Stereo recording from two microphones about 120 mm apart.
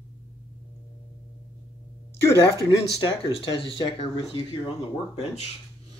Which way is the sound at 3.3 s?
50° left (ahead or behind).